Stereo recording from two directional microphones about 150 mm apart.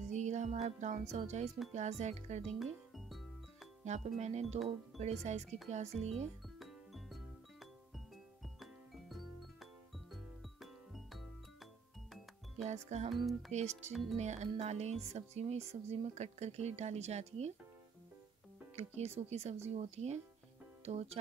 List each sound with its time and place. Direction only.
0.1 s music: 50° right (ahead or behind)
1.7 s speech: 50° right (ahead or behind)
2.6 s music: centre (ahead or behind)
3.8 s speech: 50° right (ahead or behind)
6.6 s music: centre (ahead or behind)
8.5 s music: centre (ahead or behind)
12.6 s speech: 50° right (ahead or behind)
13.1 s speech: centre (ahead or behind)
13.5 s speech: 50° right (ahead or behind)
18.8 s speech: 45° right (ahead or behind)